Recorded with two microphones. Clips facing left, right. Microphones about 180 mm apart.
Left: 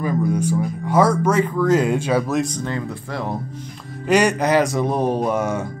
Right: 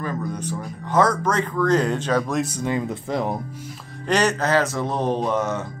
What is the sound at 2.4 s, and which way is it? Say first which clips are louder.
Speech: right 1 dB; 10° right (ahead or behind).